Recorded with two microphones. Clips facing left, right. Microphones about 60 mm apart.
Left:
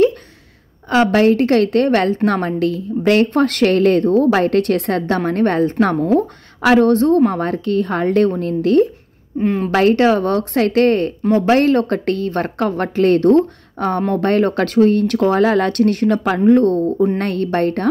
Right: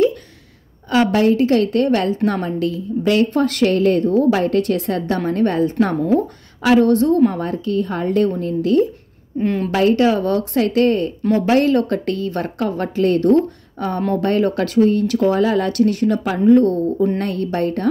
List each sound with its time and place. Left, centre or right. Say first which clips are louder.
0.8 s a woman's voice: left 2 dB; left
9.4 s a woman's voice: left 2 dB; centre
9.7 s a woman's voice: left 2 dB; left